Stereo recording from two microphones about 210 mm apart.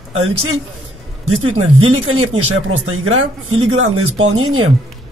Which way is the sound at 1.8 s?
75° right (ahead or behind).